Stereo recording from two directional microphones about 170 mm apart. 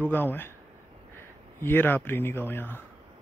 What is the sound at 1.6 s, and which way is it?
Speech, 10° left (ahead or behind).